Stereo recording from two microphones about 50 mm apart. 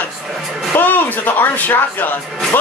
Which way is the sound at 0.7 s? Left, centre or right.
Left.